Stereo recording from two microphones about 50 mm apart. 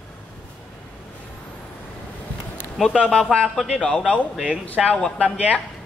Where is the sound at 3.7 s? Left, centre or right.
Centre.